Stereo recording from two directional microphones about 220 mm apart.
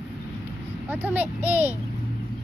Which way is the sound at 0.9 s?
10° right (ahead or behind).